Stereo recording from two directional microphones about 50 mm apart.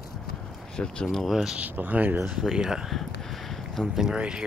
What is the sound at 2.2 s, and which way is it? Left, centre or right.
Speech, centre.